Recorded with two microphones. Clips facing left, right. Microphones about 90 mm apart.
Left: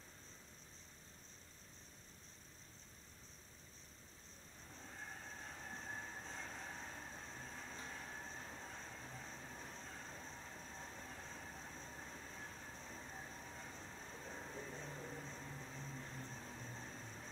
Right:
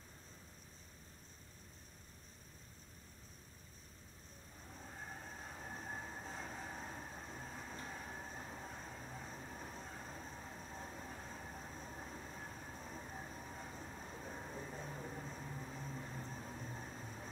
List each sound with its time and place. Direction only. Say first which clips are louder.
4.7 s train: right 2 dB; 15° right (ahead or behind)